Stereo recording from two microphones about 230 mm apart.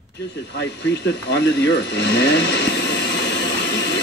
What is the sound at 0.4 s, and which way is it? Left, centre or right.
Mechanisms, left.